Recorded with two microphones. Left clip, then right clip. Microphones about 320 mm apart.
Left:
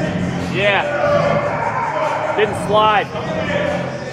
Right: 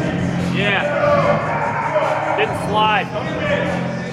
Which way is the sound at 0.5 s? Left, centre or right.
Left.